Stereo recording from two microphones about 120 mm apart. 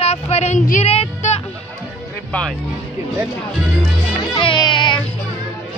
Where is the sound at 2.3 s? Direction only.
10° left (ahead or behind).